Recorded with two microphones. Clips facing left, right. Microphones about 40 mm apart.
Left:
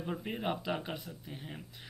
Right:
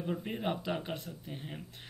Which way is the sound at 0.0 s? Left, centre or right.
Centre.